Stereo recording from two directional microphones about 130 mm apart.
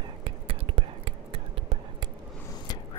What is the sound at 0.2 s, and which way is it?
Whispering, 45° right (ahead or behind).